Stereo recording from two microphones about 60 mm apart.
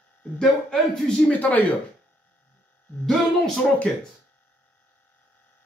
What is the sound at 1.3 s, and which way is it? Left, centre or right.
Speech, left.